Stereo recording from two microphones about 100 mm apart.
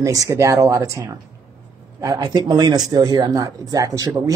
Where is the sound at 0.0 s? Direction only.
35° right (ahead or behind).